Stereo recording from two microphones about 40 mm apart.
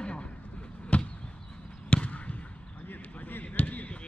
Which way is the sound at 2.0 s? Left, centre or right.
Left.